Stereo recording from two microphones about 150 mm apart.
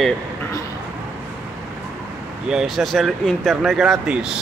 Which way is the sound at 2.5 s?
Centre (ahead or behind).